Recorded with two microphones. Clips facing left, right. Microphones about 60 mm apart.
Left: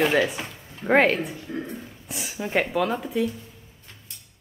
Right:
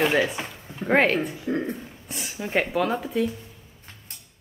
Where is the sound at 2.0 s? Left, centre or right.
Centre.